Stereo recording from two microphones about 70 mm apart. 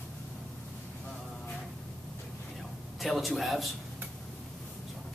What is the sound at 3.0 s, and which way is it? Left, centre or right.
Speech, centre.